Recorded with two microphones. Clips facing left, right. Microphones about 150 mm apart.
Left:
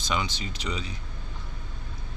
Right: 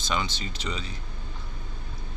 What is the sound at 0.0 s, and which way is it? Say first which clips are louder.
Speech: even; 10° left (ahead or behind).